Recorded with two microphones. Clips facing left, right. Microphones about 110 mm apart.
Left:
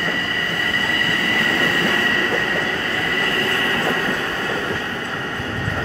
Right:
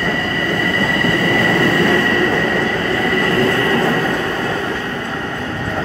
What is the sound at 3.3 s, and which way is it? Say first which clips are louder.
Train: right 7 dB; 25° right (ahead or behind).